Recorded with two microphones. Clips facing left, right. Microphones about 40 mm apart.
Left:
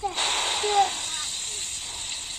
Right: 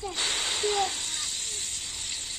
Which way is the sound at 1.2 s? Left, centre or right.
Left.